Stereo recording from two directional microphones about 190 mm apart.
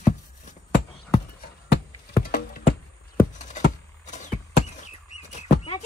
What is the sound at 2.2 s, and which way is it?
Music, 55° left (ahead or behind).